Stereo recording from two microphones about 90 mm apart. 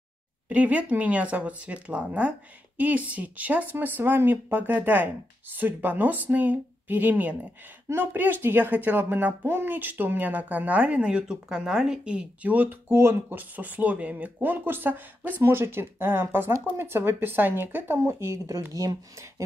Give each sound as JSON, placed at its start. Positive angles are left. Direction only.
{"t": 0.5, "sound": "speech", "side_deg": -15}